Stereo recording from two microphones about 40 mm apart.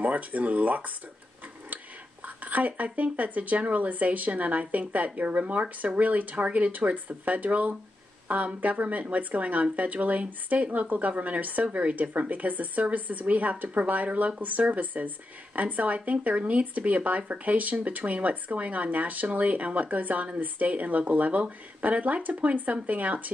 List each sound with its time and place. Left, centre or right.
0.0 s speech: right
2.2 s speech: right